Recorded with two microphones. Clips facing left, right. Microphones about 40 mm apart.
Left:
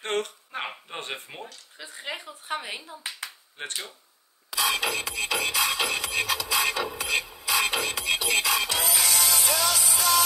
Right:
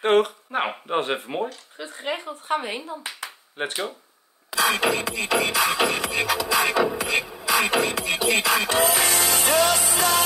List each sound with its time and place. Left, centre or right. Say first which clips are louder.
0.0 s speech: right 10 dB; centre
0.5 s speech: right 9 dB; right
4.5 s music: right 5 dB; right